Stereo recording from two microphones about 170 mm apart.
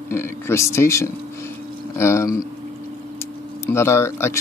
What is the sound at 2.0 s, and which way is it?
Speech, 15° left (ahead or behind).